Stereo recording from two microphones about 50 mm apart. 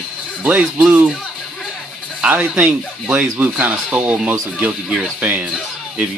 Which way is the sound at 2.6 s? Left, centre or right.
Right.